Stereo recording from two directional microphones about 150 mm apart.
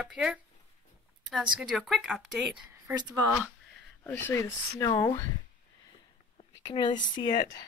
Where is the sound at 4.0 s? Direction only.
15° left (ahead or behind).